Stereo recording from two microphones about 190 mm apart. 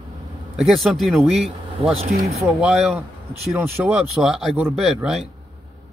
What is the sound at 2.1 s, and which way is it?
Speech, 55° right (ahead or behind).